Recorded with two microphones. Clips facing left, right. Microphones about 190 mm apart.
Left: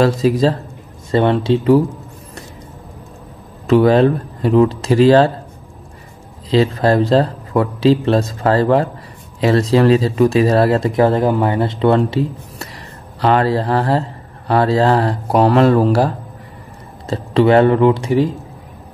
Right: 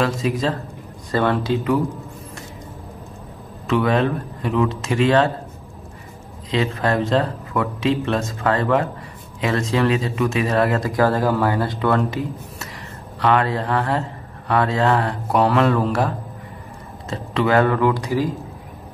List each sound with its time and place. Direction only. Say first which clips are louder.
0.0 s speech: left 7 dB; 35° left (ahead or behind)
1.1 s speech: left 5 dB; 25° left (ahead or behind)
3.6 s speech: left 8 dB; 35° left (ahead or behind)
6.5 s speech: left 7 dB; 35° left (ahead or behind)